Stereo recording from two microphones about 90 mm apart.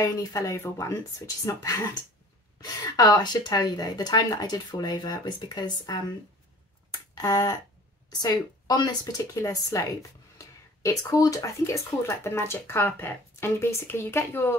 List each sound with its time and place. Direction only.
0.0 s speech: 40° left (ahead or behind)
2.6 s speech: 50° left (ahead or behind)
6.9 s a sound: 45° left (ahead or behind)
8.1 s a woman's voice: 45° left (ahead or behind)
9.2 s speech: 35° left (ahead or behind)